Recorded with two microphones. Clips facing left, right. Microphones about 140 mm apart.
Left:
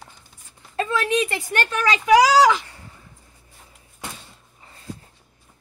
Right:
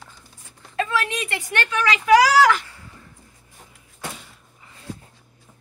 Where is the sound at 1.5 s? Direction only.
40° left (ahead or behind).